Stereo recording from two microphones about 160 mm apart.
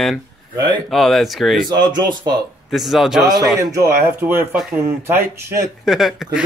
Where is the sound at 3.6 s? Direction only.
20° right (ahead or behind).